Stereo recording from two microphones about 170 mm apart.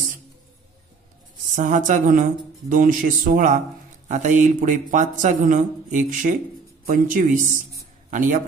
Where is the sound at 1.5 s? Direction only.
50° right (ahead or behind).